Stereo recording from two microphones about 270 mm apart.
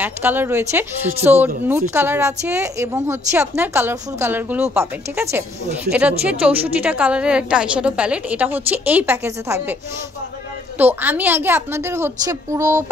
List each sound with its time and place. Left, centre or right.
0.0 s a woman's voice: centre
10.8 s a woman's voice: centre